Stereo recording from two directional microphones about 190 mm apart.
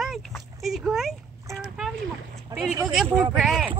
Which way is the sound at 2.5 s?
20° right (ahead or behind).